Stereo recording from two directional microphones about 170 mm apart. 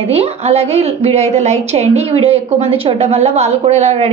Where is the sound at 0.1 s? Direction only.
35° right (ahead or behind).